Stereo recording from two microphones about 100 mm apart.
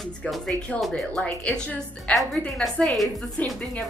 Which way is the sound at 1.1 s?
15° left (ahead or behind).